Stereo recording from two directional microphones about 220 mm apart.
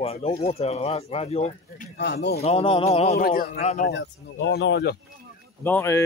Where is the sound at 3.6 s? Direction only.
30° left (ahead or behind).